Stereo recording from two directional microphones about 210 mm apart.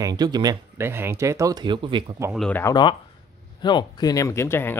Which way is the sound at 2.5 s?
15° left (ahead or behind).